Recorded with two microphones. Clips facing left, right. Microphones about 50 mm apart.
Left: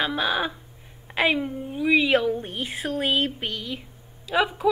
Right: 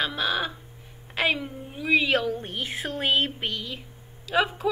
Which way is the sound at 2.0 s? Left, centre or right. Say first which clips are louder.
Left 3 dB; centre.